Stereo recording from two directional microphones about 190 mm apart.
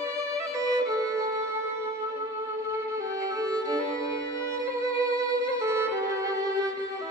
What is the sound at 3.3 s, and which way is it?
Music, 20° right (ahead or behind).